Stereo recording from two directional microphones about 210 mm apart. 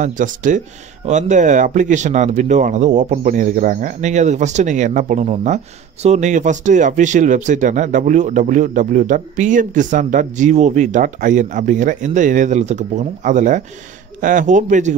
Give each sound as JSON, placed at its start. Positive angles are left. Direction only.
{"t": 0.0, "sound": "speech", "side_deg": -40}